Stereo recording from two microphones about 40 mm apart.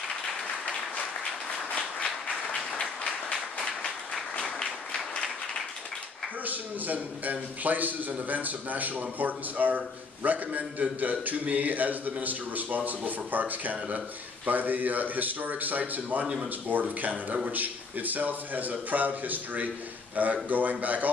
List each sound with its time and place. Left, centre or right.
1.7 s applause: left
3.6 s a sound: centre
4.9 s applause: centre
6.4 s a man's voice: right